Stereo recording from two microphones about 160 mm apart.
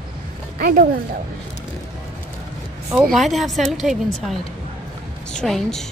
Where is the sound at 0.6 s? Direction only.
70° right (ahead or behind).